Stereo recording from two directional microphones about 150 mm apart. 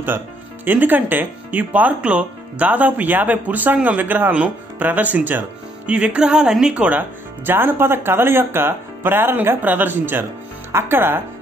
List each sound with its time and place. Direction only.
0.7 s speech: 10° right (ahead or behind)